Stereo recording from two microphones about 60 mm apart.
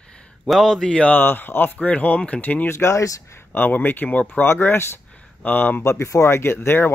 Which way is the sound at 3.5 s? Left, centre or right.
Left.